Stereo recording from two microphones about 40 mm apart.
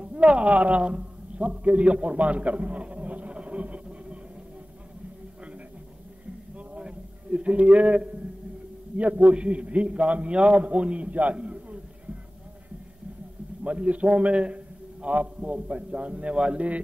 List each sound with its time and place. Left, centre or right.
0.0 s a man's voice: right
6.7 s a sound: right
8.9 s a man's voice: right
13.7 s a man's voice: right